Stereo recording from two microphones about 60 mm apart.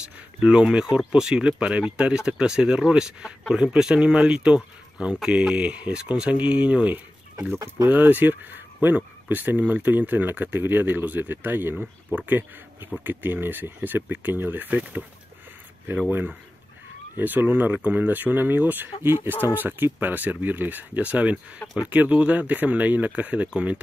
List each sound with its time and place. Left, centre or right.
0.0 s speech: centre
7.5 s speech: right
7.9 s speech: right
11.7 s speech: right
16.1 s speech: right